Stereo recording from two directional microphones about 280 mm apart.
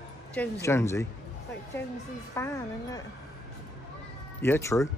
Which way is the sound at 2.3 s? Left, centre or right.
Centre.